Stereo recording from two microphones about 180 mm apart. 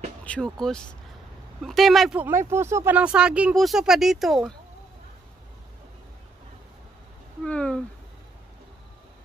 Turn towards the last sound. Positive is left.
turn(degrees=5)  # may be behind; listen again after turning